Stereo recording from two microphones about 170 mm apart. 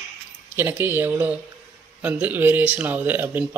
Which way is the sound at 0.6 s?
15° right (ahead or behind).